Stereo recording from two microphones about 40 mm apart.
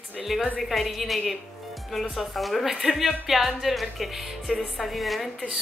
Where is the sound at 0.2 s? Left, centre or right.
Centre.